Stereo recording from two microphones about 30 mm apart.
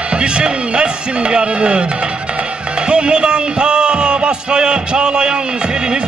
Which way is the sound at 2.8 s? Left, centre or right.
Right.